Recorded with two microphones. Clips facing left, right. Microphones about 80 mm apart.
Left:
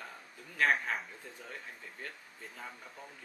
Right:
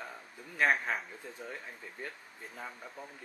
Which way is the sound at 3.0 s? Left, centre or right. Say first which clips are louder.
Right 4 dB; centre.